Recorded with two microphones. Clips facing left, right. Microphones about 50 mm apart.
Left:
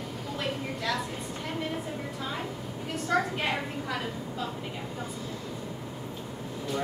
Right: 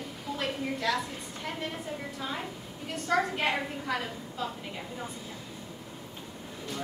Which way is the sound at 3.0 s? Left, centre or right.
Centre.